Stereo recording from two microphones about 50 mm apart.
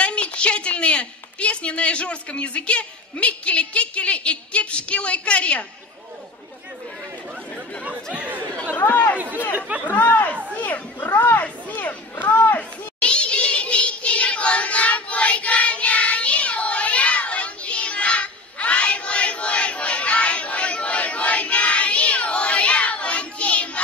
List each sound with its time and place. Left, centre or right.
0.0 s a woman's voice: left
7.8 s speech: right
9.8 s speech: left
12.5 s a sound: left